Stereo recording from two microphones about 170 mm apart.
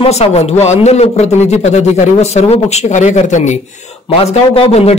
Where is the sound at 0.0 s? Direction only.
40° left (ahead or behind).